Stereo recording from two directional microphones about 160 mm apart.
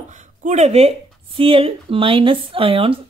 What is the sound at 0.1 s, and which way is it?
A woman's voice, 50° right (ahead or behind).